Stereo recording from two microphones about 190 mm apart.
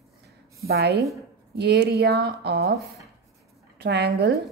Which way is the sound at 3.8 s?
60° right (ahead or behind).